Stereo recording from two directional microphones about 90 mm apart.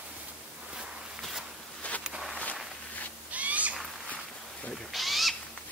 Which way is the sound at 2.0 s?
10° right (ahead or behind).